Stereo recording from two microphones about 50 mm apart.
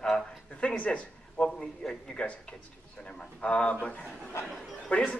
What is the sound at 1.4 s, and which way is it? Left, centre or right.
Speech, centre.